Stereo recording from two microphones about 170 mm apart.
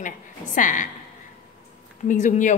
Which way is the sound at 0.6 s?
50° left (ahead or behind).